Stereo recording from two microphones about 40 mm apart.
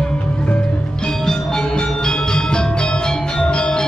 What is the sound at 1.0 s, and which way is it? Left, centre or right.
Music, centre.